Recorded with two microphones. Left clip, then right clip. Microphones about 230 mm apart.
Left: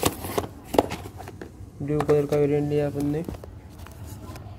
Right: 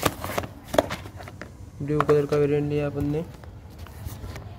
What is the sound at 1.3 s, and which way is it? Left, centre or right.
Speech, centre.